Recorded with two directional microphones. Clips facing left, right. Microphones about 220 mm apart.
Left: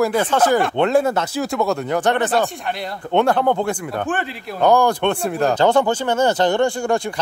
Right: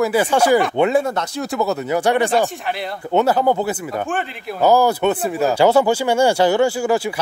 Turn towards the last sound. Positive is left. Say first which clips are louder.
# right 2 dB
turn(degrees=-5)  # may be behind; listen again after turning